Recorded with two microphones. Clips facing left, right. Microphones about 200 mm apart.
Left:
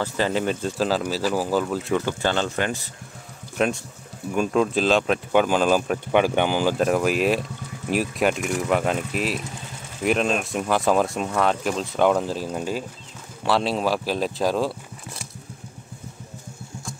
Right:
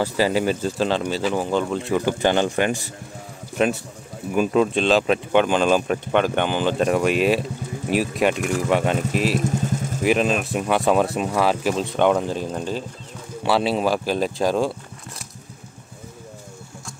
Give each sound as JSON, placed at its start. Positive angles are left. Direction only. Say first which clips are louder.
{"t": 0.0, "sound": "speech", "louder": "right 3 dB", "side_deg": -10}
{"t": 2.0, "sound": "speech", "louder": "right 6 dB", "side_deg": -15}
{"t": 4.3, "sound": "speech", "louder": "right 2 dB", "side_deg": -5}
{"t": 9.5, "sound": "vehicle", "louder": "right 13 dB", "side_deg": -45}
{"t": 10.0, "sound": "speech", "louder": "right 2 dB", "side_deg": 0}
{"t": 13.4, "sound": "speech", "louder": "right 2 dB", "side_deg": -5}